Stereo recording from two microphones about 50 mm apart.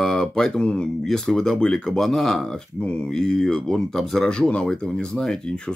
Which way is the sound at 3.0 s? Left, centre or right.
Centre.